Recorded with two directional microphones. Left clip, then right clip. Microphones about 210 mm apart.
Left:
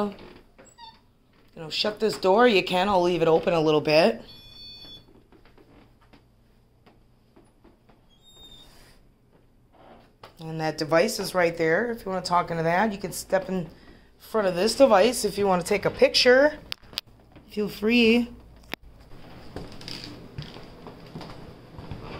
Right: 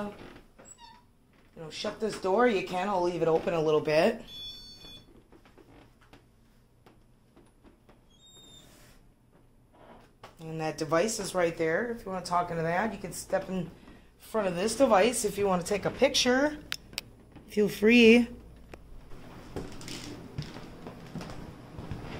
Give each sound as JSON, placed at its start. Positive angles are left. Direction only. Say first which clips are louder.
{"t": 1.6, "sound": "speech", "louder": "left 8 dB", "side_deg": 35}
{"t": 10.3, "sound": "a woman's voice", "louder": "left 5 dB", "side_deg": 20}
{"t": 17.5, "sound": "speech", "louder": "right 2 dB", "side_deg": -15}